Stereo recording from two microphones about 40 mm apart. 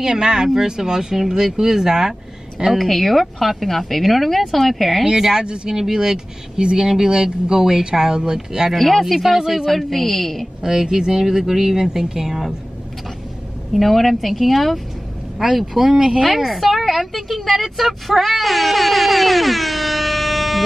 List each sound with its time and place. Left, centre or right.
0.0 s speech: centre
2.8 s a woman's voice: centre
5.7 s speech: centre
8.7 s a woman's voice: centre
9.0 s speech: centre
9.7 s a woman's voice: centre
10.6 s speech: centre
13.7 s a woman's voice: centre
16.3 s a woman's voice: centre